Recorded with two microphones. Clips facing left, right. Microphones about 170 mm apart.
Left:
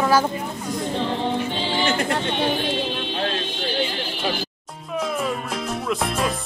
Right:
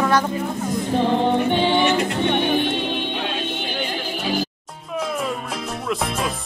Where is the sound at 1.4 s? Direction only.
60° right (ahead or behind).